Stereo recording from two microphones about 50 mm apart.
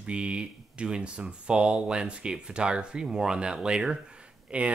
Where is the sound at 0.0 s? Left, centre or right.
Right.